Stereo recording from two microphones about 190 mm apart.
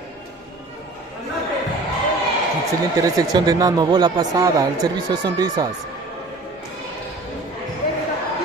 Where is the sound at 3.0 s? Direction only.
20° right (ahead or behind).